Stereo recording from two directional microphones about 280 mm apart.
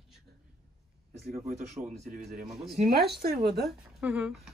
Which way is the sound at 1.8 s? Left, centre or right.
Centre.